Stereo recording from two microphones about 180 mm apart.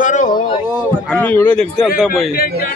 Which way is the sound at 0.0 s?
40° left (ahead or behind).